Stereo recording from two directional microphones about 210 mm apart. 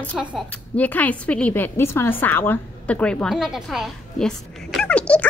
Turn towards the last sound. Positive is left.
turn(degrees=5)  # may be behind; listen again after turning